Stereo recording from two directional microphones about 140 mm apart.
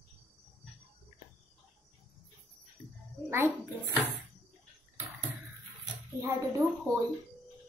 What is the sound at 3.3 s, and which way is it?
Speech, 15° right (ahead or behind).